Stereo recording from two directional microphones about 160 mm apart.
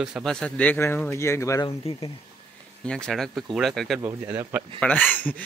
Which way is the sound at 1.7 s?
35° left (ahead or behind).